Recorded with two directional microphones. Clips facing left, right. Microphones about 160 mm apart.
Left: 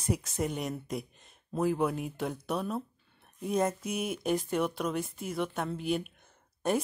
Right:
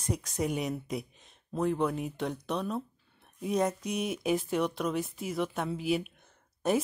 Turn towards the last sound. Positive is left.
turn(degrees=0)  # may be behind; listen again after turning